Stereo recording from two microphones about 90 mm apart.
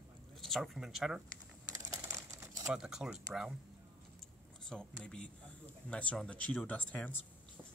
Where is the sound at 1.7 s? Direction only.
40° right (ahead or behind).